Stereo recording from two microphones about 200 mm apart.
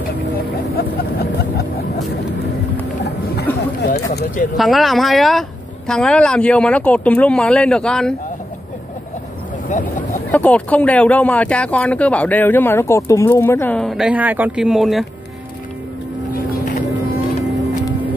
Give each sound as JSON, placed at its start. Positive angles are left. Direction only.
{"t": 3.8, "sound": "a sound", "side_deg": 55}
{"t": 4.6, "sound": "speech", "side_deg": 0}
{"t": 9.7, "sound": "vehicle", "side_deg": 40}
{"t": 10.3, "sound": "speech", "side_deg": 10}
{"t": 16.3, "sound": "vehicle", "side_deg": 45}